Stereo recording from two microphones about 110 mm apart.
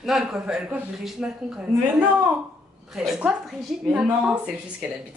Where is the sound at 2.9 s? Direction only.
5° right (ahead or behind).